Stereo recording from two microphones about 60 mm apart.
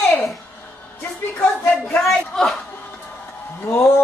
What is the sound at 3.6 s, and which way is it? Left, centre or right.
Speech, left.